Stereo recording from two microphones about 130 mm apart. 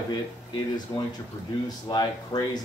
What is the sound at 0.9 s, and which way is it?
A man's voice, 30° left (ahead or behind).